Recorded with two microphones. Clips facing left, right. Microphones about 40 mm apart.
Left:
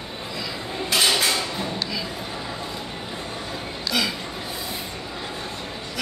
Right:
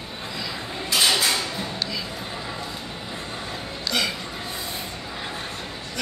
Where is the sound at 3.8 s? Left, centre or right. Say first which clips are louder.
Left 1 dB; centre.